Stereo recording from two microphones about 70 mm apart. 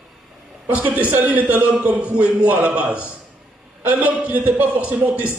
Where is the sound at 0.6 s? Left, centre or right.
Right.